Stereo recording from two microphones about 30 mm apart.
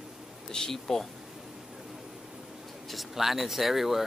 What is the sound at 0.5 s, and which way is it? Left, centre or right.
Speech, centre.